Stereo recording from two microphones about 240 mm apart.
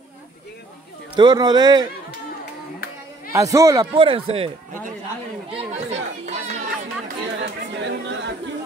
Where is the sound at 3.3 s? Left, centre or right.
Centre; by 4.9 s right.